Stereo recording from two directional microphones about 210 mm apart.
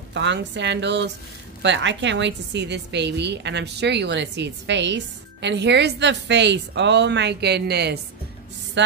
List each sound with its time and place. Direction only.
0.1 s a woman's voice: 60° right (ahead or behind)
8.8 s music: 60° right (ahead or behind)